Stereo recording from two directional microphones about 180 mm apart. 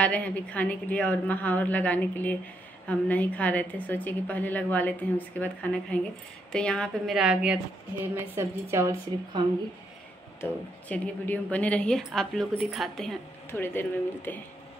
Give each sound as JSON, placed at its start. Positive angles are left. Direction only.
{"t": 0.0, "sound": "a woman's voice", "side_deg": 10}
{"t": 10.4, "sound": "a woman's voice", "side_deg": 10}
{"t": 13.5, "sound": "a woman's voice", "side_deg": 10}